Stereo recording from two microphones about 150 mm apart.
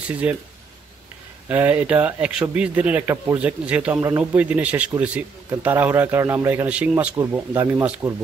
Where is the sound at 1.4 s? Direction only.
10° right (ahead or behind).